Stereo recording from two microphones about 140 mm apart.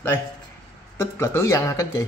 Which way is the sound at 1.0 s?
20° left (ahead or behind).